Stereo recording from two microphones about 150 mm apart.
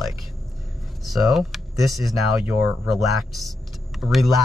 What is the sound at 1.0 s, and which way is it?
Speech, centre (ahead or behind).